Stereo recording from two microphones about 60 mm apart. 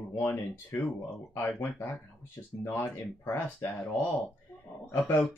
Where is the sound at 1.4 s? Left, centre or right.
Left.